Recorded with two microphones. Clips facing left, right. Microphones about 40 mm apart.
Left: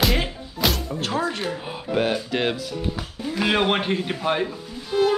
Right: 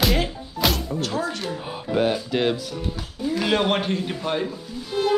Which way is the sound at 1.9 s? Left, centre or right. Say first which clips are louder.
Right 1 dB; left.